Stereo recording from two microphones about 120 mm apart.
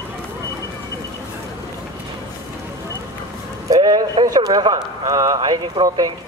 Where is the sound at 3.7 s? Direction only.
30° right (ahead or behind).